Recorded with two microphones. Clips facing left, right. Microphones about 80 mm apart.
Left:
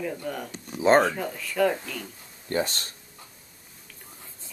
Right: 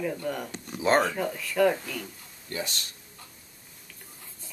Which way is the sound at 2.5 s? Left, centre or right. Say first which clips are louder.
Left 7 dB; left.